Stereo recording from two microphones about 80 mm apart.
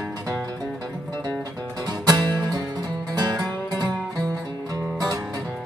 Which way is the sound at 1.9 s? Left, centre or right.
Right.